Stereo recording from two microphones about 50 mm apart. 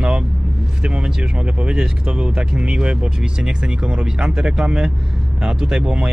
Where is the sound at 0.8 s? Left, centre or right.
Centre.